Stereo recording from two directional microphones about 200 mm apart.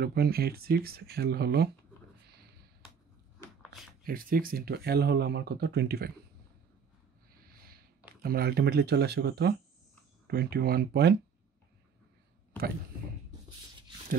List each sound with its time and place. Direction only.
0.0 s speech: 50° right (ahead or behind)
4.0 s speech: 45° right (ahead or behind)
8.2 s speech: 50° right (ahead or behind)